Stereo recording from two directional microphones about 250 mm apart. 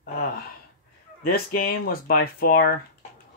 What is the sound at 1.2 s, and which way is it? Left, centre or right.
Speech, left.